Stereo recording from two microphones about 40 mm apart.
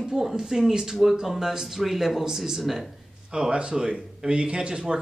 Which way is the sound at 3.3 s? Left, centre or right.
Right.